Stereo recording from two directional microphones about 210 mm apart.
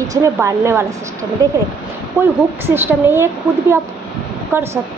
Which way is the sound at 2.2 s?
10° right (ahead or behind).